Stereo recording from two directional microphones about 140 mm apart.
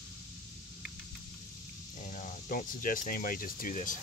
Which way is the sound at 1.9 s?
60° left (ahead or behind).